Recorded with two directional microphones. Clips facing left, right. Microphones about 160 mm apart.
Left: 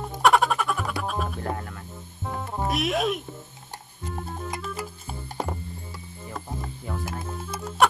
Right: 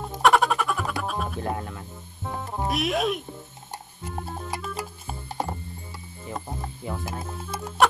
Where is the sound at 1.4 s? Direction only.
20° right (ahead or behind).